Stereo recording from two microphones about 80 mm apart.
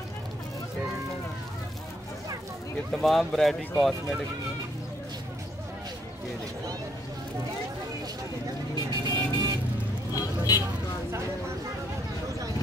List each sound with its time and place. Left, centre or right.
2.9 s speech: centre
9.0 s vehicle: right
10.1 s vehicle: left